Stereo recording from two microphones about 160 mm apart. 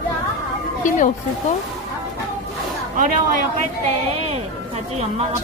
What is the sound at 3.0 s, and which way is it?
Speech, 55° right (ahead or behind).